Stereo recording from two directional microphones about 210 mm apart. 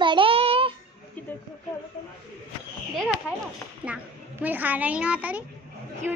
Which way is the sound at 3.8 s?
5° right (ahead or behind).